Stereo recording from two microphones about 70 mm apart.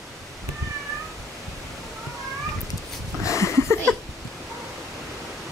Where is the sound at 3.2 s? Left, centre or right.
Left.